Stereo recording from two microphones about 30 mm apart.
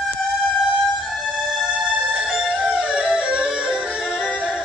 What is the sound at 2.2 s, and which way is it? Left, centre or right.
Music, right.